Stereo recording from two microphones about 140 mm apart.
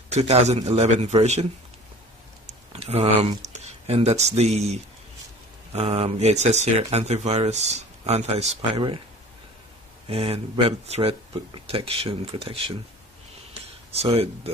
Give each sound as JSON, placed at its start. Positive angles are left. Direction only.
{"t": 0.1, "sound": "speech", "side_deg": -50}
{"t": 2.7, "sound": "speech", "side_deg": -45}
{"t": 10.0, "sound": "speech", "side_deg": -45}
{"t": 13.9, "sound": "speech", "side_deg": -45}